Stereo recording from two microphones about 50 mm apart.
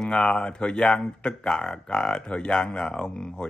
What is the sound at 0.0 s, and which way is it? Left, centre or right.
Speech, centre.